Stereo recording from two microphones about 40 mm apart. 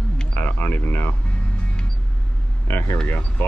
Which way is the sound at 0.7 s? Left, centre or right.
Left.